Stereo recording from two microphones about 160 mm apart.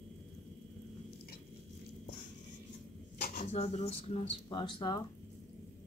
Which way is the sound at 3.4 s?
45° left (ahead or behind).